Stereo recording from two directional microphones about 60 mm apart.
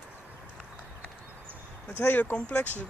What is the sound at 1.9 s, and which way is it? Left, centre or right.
Speech, left.